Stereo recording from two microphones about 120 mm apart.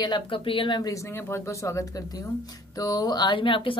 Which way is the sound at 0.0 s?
40° left (ahead or behind).